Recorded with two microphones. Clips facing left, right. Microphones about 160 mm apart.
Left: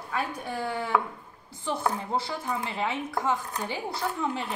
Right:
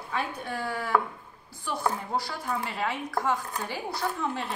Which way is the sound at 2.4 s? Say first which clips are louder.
Even; 20° left (ahead or behind).